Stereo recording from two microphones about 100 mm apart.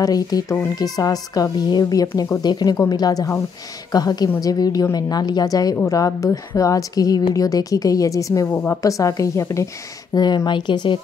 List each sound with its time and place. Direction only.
0.0 s a woman's voice: 40° left (ahead or behind); by 8.7 s 25° left (ahead or behind)
8.8 s a woman's voice: 35° left (ahead or behind)
10.1 s speech: 45° left (ahead or behind)